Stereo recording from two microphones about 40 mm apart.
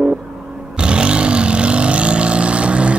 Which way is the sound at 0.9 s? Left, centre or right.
Right.